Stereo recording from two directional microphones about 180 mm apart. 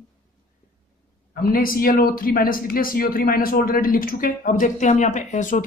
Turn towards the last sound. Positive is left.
turn(degrees=45)  # may be behind; listen again after turning